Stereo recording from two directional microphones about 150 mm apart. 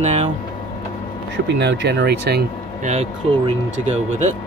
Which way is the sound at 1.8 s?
90° right.